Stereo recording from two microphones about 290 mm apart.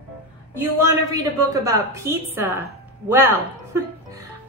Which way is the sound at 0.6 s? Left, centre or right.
Centre.